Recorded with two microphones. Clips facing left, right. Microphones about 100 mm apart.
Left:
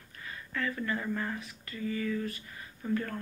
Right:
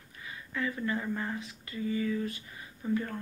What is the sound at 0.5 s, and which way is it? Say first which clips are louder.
Speech: right 1 dB; 15° right (ahead or behind).